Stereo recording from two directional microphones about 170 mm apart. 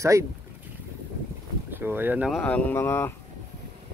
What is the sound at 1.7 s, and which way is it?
Speech, 10° right (ahead or behind).